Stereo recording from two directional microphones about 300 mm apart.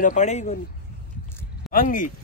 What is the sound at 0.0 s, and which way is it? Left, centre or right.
Speech, left.